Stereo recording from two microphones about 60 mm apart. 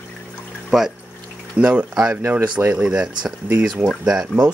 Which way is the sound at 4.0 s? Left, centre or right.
Centre.